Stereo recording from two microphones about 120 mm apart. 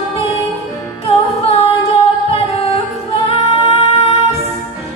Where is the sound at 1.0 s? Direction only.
60° left (ahead or behind).